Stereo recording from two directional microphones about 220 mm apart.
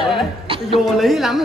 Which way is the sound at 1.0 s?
Centre (ahead or behind).